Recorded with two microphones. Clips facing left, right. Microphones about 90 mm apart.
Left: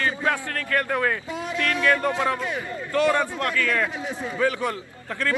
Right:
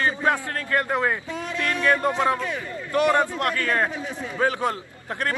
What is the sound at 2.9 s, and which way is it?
Speech, 20° right (ahead or behind).